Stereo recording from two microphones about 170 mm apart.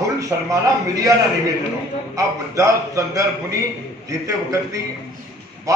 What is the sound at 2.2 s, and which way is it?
A man's voice, 20° right (ahead or behind).